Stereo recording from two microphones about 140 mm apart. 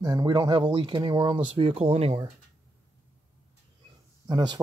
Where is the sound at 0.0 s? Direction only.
30° right (ahead or behind); by 2.1 s 45° right (ahead or behind).